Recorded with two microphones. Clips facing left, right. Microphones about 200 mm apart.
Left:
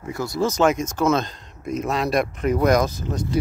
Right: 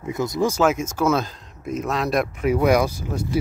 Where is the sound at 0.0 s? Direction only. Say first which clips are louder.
Right 1 dB; 20° right (ahead or behind).